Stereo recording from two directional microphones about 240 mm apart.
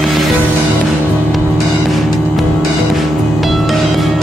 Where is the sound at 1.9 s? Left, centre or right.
Centre.